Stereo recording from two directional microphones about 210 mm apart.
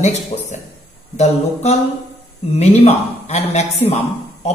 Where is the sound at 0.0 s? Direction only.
35° left (ahead or behind).